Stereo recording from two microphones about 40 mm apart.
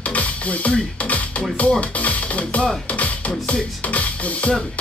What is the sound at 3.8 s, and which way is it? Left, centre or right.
Speech, left.